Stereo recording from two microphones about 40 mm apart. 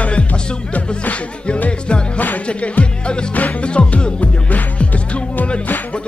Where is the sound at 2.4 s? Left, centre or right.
Left.